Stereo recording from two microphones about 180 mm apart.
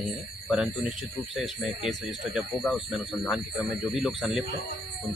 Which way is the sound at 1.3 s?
Centre (ahead or behind).